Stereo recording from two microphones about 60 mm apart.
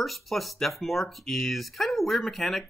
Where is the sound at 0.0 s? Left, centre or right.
Centre.